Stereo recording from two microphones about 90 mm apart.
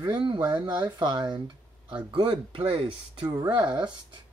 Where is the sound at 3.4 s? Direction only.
55° right (ahead or behind).